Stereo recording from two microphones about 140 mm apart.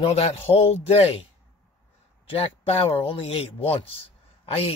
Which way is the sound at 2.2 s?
40° left (ahead or behind).